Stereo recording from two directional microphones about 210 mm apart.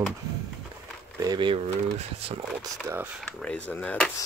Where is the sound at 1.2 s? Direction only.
20° right (ahead or behind).